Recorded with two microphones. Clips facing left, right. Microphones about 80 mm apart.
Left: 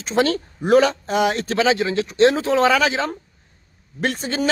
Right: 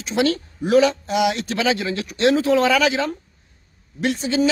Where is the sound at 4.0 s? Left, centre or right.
Left.